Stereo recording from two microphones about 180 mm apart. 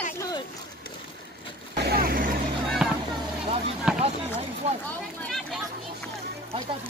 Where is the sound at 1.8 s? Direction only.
60° right (ahead or behind).